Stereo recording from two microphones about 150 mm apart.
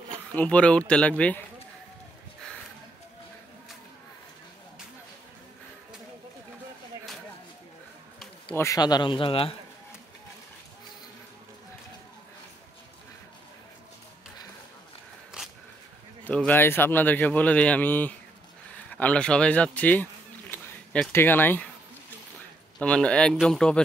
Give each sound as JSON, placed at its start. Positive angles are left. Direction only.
{"t": 0.1, "sound": "speech", "side_deg": 10}
{"t": 8.5, "sound": "speech", "side_deg": 20}
{"t": 16.3, "sound": "a man's voice", "side_deg": 10}
{"t": 22.8, "sound": "a man's voice", "side_deg": 5}